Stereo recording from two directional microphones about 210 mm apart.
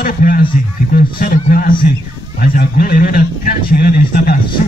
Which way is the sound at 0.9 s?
45° left (ahead or behind).